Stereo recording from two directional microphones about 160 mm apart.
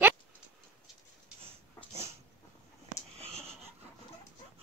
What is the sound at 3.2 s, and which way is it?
Wheeze, 40° right (ahead or behind).